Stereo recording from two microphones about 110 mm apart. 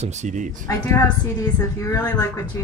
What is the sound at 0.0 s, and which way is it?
Speech, 90° right.